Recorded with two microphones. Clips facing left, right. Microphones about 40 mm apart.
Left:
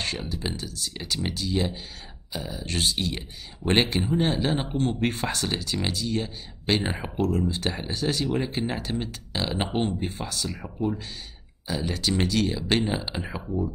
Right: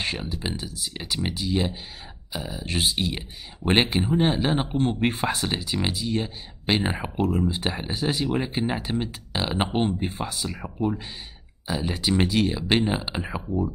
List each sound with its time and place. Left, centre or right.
0.2 s speech: centre